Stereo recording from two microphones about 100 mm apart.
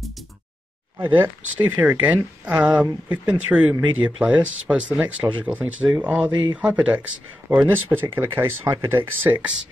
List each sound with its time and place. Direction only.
0.9 s speech: 20° right (ahead or behind)